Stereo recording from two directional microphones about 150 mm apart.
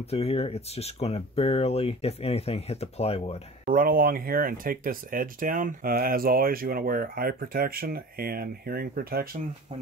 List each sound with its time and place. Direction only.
0.1 s speech: 40° left (ahead or behind)
3.6 s speech: 70° right (ahead or behind)